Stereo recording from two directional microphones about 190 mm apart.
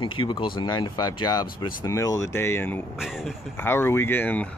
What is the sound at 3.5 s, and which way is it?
Speech, 10° left (ahead or behind).